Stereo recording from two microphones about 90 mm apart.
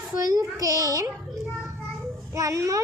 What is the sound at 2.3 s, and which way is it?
Speech, 35° right (ahead or behind).